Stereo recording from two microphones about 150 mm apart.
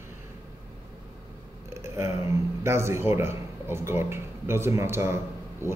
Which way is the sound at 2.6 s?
15° right (ahead or behind).